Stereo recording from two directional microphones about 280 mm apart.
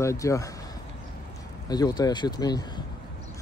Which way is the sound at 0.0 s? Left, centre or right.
Centre.